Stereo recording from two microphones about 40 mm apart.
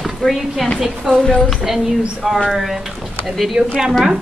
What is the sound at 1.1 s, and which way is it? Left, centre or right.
Speech, centre.